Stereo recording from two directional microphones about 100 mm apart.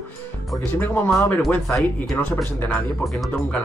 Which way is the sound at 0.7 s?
20° left (ahead or behind).